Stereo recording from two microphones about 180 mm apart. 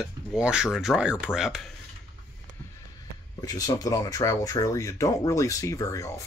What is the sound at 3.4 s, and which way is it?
Speech, 20° left (ahead or behind).